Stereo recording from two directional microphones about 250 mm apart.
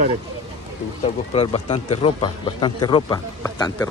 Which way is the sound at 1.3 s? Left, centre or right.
Left.